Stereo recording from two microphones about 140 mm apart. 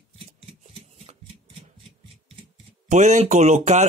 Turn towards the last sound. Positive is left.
turn(degrees=-60)  # may be behind; listen again after turning